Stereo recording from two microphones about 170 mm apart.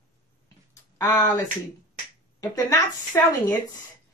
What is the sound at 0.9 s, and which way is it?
A woman's voice, 20° left (ahead or behind).